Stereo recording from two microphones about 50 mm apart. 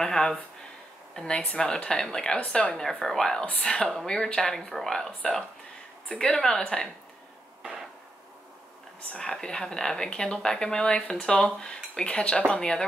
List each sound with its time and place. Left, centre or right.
0.0 s speech: centre
2.8 s speech: centre
9.1 s speech: centre